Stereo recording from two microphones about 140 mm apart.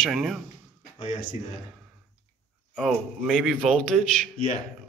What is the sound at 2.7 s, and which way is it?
Speech, 5° right (ahead or behind).